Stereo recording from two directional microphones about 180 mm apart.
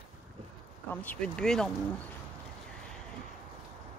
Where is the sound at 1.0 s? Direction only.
5° left (ahead or behind).